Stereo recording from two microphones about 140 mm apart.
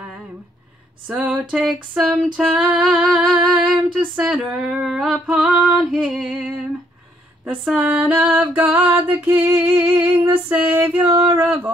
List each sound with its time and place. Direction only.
1.0 s music: 10° right (ahead or behind)
1.5 s female singing: centre (ahead or behind)
4.2 s music: 10° right (ahead or behind)
7.8 s music: 10° right (ahead or behind)